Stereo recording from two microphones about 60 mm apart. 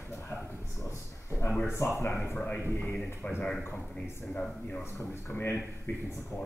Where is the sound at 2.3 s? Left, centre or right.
Left.